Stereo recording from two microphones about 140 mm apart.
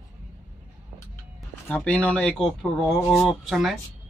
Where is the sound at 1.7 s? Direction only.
10° left (ahead or behind).